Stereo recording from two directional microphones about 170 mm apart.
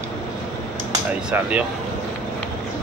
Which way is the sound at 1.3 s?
10° right (ahead or behind).